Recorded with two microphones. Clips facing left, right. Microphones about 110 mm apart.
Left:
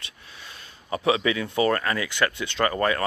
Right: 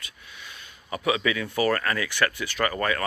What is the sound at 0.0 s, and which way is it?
Speech, 30° left (ahead or behind).